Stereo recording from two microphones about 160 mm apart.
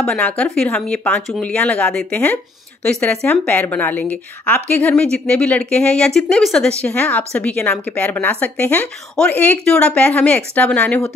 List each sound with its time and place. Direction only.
0.0 s a woman's voice: 5° left (ahead or behind)